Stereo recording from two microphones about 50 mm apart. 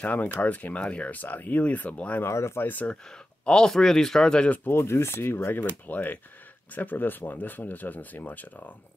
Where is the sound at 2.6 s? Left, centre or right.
Left.